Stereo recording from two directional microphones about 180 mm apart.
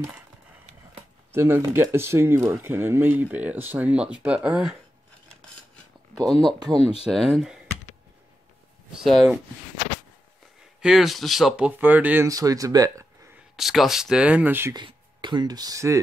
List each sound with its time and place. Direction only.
1.3 s speech: 15° right (ahead or behind)
6.1 s speech: 5° left (ahead or behind)
6.8 s speech: 35° left (ahead or behind)
7.1 s speech: centre (ahead or behind)
8.9 s speech: centre (ahead or behind)
10.8 s speech: centre (ahead or behind)
13.6 s speech: centre (ahead or behind)
14.8 s speech: 25° right (ahead or behind)